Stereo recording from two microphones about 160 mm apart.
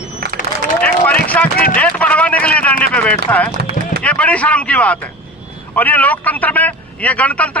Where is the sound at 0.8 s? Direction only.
10° left (ahead or behind).